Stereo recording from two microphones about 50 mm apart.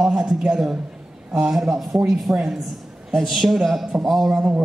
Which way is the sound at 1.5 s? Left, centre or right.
Centre.